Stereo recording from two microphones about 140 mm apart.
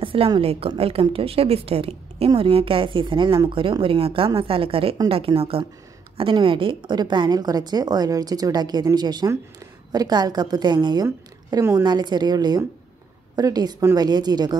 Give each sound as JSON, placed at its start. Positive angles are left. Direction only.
{"t": 0.0, "sound": "a woman's voice", "side_deg": -40}